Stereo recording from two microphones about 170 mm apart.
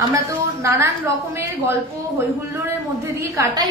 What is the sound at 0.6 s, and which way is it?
Speech, 15° right (ahead or behind).